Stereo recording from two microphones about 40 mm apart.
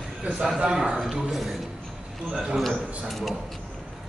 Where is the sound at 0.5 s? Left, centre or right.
Centre.